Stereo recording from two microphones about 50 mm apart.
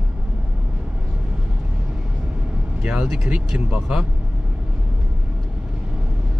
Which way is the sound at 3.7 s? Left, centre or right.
Centre.